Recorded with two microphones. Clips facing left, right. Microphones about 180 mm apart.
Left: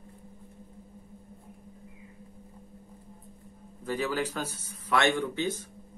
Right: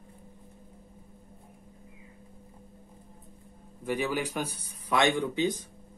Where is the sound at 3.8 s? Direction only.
15° right (ahead or behind).